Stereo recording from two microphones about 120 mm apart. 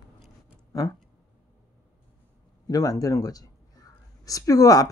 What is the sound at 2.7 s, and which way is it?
Speech, 30° left (ahead or behind).